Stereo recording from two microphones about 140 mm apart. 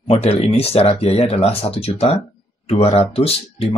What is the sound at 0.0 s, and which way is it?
Speech, 45° left (ahead or behind).